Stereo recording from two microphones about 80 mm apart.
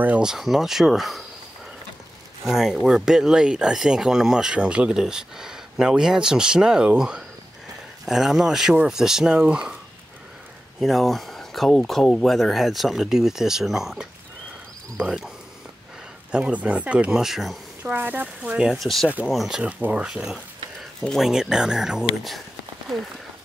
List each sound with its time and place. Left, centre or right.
0.2 s speech: centre
2.4 s speech: centre
10.8 s speech: centre
17.8 s speech: right
18.8 s speech: centre
19.6 s speech: centre
21.0 s speech: centre
21.3 s speech: centre